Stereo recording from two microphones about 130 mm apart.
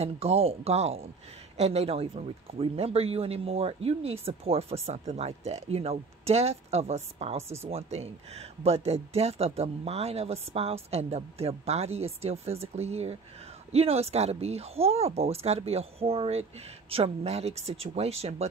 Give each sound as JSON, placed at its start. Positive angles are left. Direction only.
{"t": 0.0, "sound": "speech", "side_deg": -50}